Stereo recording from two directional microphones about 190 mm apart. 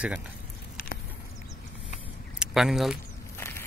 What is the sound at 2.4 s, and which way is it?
Speech, centre (ahead or behind).